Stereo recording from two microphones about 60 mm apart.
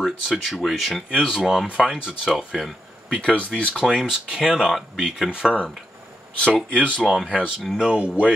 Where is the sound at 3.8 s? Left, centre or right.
Centre.